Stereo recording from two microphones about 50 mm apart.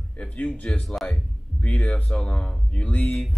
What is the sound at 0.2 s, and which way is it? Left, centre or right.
Speech, left.